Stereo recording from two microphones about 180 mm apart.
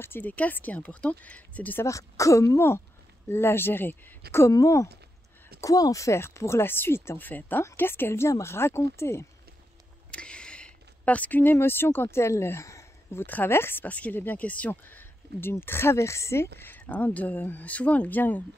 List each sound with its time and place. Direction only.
0.0 s speech: 10° left (ahead or behind)